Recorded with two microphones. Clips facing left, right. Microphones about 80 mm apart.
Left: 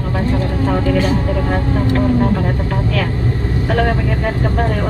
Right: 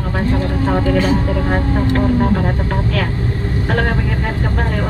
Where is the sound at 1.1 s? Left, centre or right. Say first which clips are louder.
Right 1 dB; centre.